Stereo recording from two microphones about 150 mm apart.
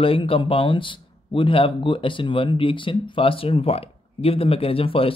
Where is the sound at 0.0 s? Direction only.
35° left (ahead or behind).